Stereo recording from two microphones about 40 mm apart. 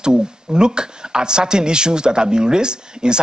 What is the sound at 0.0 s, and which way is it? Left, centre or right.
Speech, centre.